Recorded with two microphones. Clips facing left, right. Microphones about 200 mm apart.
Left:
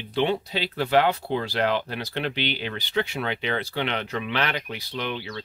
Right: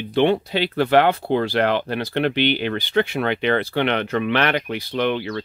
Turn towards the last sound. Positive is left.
turn(degrees=-60)  # may be behind; listen again after turning